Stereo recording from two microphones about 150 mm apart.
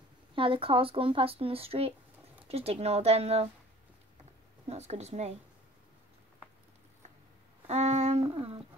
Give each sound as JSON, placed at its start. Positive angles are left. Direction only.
{"t": 0.4, "sound": "speech", "side_deg": -35}
{"t": 4.6, "sound": "speech", "side_deg": -45}
{"t": 7.6, "sound": "humming", "side_deg": -45}